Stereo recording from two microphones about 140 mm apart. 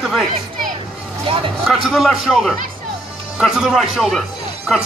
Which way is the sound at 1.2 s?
40° right (ahead or behind).